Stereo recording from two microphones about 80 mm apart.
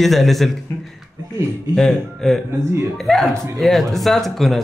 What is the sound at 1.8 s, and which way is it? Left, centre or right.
Speech, centre.